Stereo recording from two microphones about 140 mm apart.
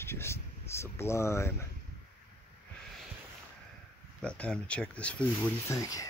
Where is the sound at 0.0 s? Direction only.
15° left (ahead or behind).